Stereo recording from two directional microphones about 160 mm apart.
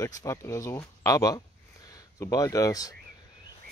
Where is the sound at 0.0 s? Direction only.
20° left (ahead or behind).